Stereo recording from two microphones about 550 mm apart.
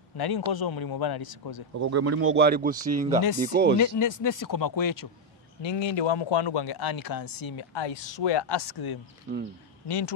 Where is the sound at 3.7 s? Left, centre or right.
Left.